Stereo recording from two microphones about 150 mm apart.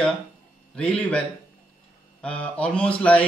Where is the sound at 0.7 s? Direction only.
5° left (ahead or behind).